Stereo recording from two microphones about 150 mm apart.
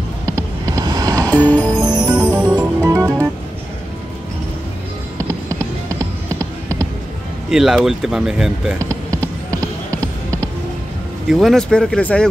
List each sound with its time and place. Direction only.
0.4 s vehicle: 25° right (ahead or behind)
1.3 s music: 10° left (ahead or behind)
1.8 s music: 30° right (ahead or behind)
2.0 s music: 10° right (ahead or behind)
2.8 s music: 20° right (ahead or behind)
5.5 s music: 20° right (ahead or behind)
7.5 s speech: 5° right (ahead or behind)
8.7 s a sound: 20° right (ahead or behind)
9.2 s music: 10° left (ahead or behind)
11.2 s speech: centre (ahead or behind)